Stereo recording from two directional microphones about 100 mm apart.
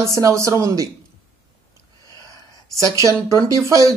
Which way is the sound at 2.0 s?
35° right (ahead or behind).